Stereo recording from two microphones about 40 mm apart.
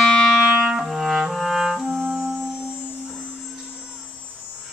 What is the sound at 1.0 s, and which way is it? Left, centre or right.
Music, centre.